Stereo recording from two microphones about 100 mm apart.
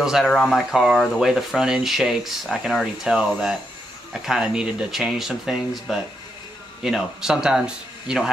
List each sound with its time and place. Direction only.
0.0 s speech: centre (ahead or behind)